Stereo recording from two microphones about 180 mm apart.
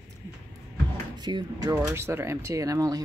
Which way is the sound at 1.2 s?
25° right (ahead or behind).